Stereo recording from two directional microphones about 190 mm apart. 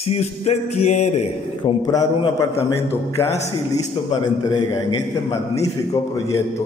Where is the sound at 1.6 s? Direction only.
20° left (ahead or behind).